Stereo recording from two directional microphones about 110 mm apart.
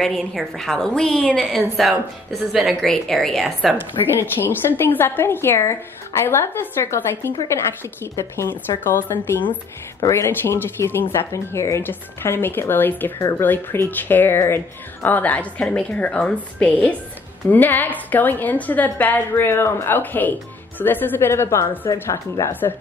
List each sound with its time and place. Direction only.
0.0 s a woman's voice: 5° left (ahead or behind)
4.2 s speech: 20° left (ahead or behind)